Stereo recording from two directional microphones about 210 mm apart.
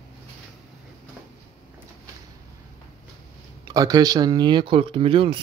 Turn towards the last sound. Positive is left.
turn(degrees=-25)  # may be behind; listen again after turning